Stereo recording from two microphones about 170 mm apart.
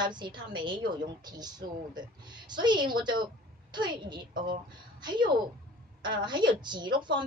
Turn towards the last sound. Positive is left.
turn(degrees=-25)  # may be behind; listen again after turning